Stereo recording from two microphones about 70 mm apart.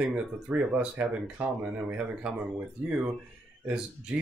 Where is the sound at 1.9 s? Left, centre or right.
Centre.